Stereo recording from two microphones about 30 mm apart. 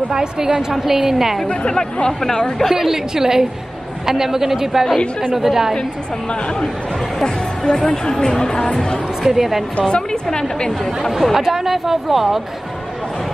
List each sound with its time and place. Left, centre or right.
0.1 s a woman's voice: right
0.7 s speech: centre
2.0 s speech: left
2.7 s speech: centre
7.2 s speech: left
9.2 s speech: centre
9.8 s speech: left
11.0 s speech: centre